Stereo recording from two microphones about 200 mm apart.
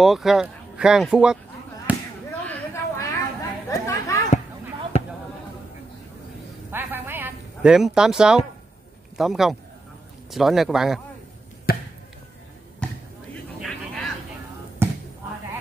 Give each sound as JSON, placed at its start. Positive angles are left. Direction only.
{"t": 0.0, "sound": "speech", "side_deg": 0}
{"t": 1.9, "sound": "a sound", "side_deg": -10}
{"t": 2.4, "sound": "a sound", "side_deg": 15}
{"t": 3.7, "sound": "chatter", "side_deg": 15}
{"t": 6.7, "sound": "a sound", "side_deg": -10}
{"t": 9.1, "sound": "a man's voice", "side_deg": 0}
{"t": 11.7, "sound": "chop", "side_deg": 50}
{"t": 13.3, "sound": "vehicle", "side_deg": 5}
{"t": 14.8, "sound": "basketball bounce", "side_deg": -10}